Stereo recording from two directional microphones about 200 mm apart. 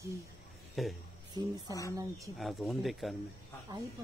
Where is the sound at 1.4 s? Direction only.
20° right (ahead or behind).